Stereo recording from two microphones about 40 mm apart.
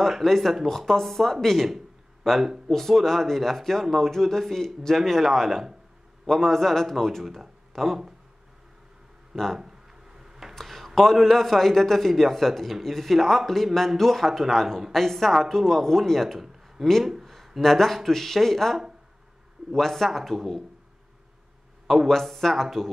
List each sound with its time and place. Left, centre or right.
0.1 s a man's voice: centre
9.3 s speech: centre
9.6 s a sound: centre
10.5 s a sound: centre
11.0 s a man's voice: centre
17.0 s speech: centre
17.6 s a man's voice: centre
21.8 s a man's voice: centre